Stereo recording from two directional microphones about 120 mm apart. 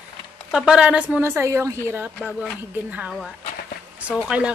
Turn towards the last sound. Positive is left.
turn(degrees=-5)  # may be behind; listen again after turning